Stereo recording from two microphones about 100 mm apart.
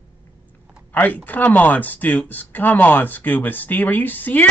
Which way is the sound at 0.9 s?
15° left (ahead or behind).